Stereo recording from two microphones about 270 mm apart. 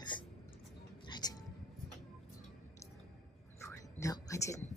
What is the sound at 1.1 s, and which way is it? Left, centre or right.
Music, centre.